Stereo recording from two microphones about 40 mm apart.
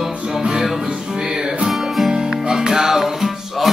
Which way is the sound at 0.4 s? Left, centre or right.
Right.